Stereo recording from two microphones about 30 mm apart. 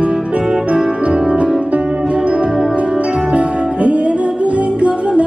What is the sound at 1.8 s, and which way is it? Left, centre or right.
Music, right.